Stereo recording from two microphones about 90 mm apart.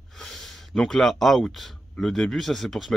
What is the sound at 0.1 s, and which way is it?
Speech, 5° left (ahead or behind).